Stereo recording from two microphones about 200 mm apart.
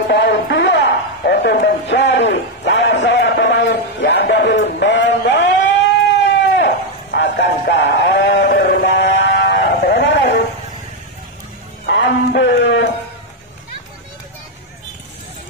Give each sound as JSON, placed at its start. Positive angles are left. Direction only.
{"t": 0.1, "sound": "a sound", "side_deg": 55}
{"t": 6.5, "sound": "sheep", "side_deg": 60}
{"t": 11.8, "sound": "music", "side_deg": 60}